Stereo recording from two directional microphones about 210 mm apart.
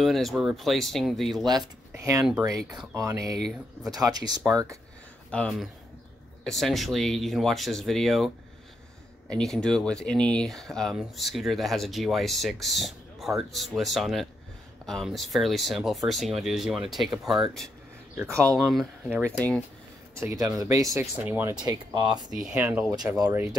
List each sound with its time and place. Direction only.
0.0 s speech: centre (ahead or behind)
1.4 s speech: 20° right (ahead or behind)
3.0 s speech: 15° right (ahead or behind)
5.3 s speech: 5° left (ahead or behind)
9.3 s speech: centre (ahead or behind)
18.1 s speech: 15° right (ahead or behind)
18.6 s speech: centre (ahead or behind)
20.2 s speech: 15° right (ahead or behind)